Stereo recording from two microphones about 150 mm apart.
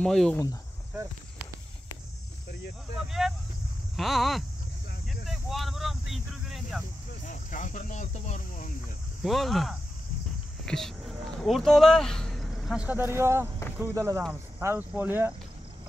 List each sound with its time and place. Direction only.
0.0 s speech: 5° left (ahead or behind)
3.1 s speech: centre (ahead or behind)
3.9 s a sound: centre (ahead or behind)
7.2 s speech: 55° left (ahead or behind)
9.2 s speech: centre (ahead or behind)